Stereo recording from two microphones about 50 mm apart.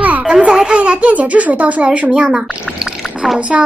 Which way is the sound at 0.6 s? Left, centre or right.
Right.